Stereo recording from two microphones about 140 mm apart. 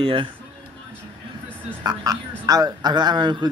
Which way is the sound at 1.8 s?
25° right (ahead or behind).